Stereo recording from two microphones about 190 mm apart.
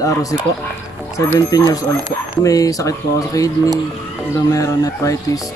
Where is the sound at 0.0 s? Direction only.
20° left (ahead or behind).